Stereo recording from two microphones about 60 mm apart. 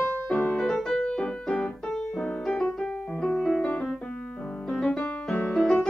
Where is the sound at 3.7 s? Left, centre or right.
Centre.